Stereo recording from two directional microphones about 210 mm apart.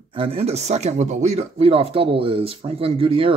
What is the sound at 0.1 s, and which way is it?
Speech, 25° right (ahead or behind).